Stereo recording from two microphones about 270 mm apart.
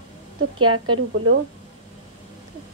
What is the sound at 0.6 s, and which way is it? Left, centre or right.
Speech, right.